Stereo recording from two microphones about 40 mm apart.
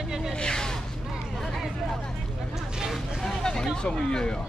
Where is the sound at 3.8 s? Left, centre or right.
Left.